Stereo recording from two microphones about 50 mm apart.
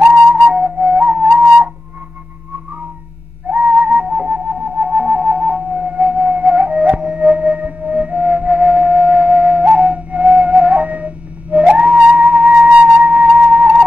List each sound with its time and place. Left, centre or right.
0.0 s flute: centre
3.4 s music: centre
9.9 s flute: right